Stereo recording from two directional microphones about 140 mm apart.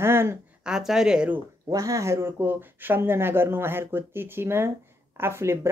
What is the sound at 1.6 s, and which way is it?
Speech, 25° right (ahead or behind).